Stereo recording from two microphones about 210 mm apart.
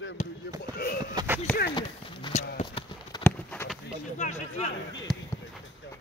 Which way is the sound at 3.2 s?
5° left (ahead or behind).